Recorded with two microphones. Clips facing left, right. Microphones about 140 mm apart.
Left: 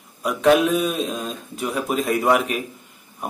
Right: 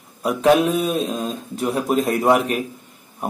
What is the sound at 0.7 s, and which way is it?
Speech, 35° right (ahead or behind).